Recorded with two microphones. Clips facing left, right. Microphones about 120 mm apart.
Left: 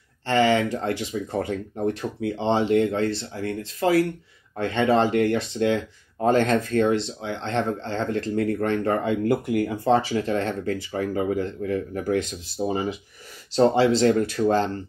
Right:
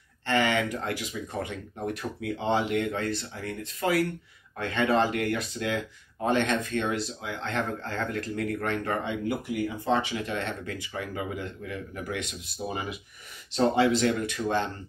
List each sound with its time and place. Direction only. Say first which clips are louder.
0.3 s speech: left 6 dB; 30° left (ahead or behind); by 9.8 s 55° left (ahead or behind)
9.8 s speech: left 6 dB; 40° left (ahead or behind)